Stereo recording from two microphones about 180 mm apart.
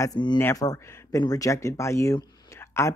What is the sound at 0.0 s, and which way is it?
Speech, 20° left (ahead or behind).